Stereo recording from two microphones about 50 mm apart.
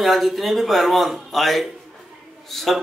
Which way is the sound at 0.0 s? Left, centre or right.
Centre.